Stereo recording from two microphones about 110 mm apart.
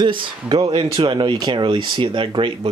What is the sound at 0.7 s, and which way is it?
Speech, 65° right (ahead or behind).